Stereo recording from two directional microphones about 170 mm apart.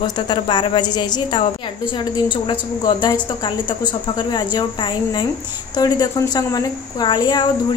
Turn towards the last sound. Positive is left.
turn(degrees=25)  # may be behind; listen again after turning